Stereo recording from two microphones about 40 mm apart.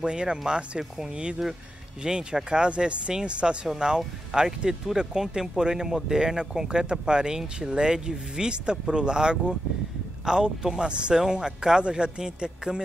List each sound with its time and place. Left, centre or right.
0.0 s speech: right